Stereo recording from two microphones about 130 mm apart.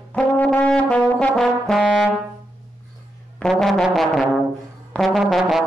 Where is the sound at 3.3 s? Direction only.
5° left (ahead or behind).